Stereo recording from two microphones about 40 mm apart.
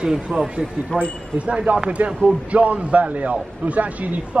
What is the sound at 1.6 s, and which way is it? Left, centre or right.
A man's voice, right.